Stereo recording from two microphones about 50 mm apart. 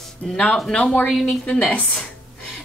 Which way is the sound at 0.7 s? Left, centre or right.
Centre.